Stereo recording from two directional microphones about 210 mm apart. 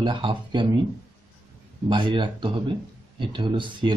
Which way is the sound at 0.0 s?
20° right (ahead or behind).